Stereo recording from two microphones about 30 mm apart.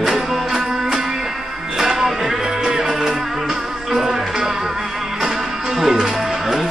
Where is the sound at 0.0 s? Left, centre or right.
Centre.